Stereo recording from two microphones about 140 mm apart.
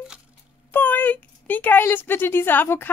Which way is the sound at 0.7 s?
15° left (ahead or behind).